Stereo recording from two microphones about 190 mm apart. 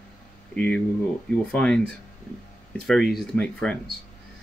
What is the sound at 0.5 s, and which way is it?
Speech, 5° left (ahead or behind).